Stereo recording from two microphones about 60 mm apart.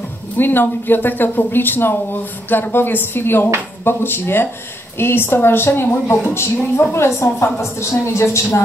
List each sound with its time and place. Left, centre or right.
0.4 s a woman's voice: left